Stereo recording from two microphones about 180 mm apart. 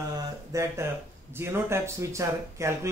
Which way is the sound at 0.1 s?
15° right (ahead or behind).